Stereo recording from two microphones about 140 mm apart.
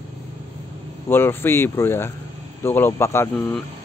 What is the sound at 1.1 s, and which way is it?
Speech, 15° left (ahead or behind).